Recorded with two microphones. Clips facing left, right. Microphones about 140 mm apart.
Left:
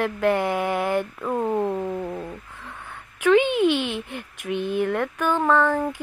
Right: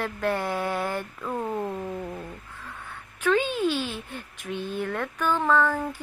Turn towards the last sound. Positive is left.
turn(degrees=15)  # may be behind; listen again after turning